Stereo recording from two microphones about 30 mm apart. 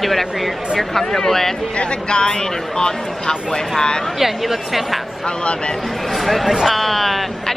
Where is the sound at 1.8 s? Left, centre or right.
Left.